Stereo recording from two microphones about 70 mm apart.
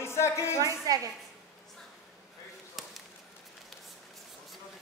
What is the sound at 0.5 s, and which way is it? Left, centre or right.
Speech, right.